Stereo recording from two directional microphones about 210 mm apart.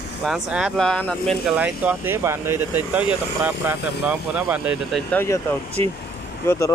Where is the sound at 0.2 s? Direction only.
Centre (ahead or behind).